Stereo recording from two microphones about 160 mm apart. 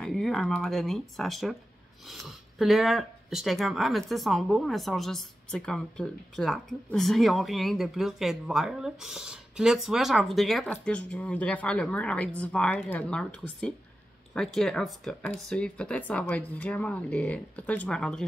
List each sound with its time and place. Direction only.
0.0 s speech: centre (ahead or behind)